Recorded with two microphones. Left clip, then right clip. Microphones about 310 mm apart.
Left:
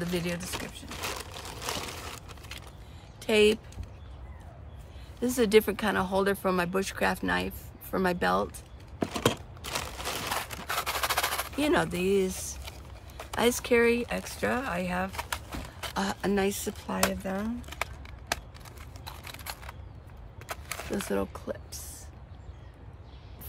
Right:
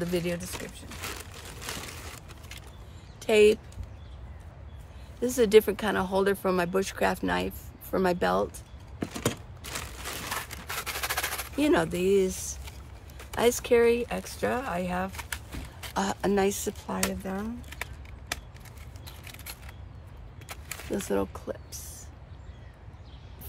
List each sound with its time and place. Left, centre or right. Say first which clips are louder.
0.0 s speech: right 2 dB; centre
0.5 s a sound: left 2 dB; centre
3.2 s speech: right 3 dB; centre
5.2 s speech: right 3 dB; centre
9.0 s scissors: left 4 dB; centre
11.5 s speech: right 3 dB; centre
15.1 s a sound: left 3 dB; centre
15.9 s speech: right 3 dB; centre
19.2 s a sound: left 3 dB; centre
21.1 s speech: right 3 dB; centre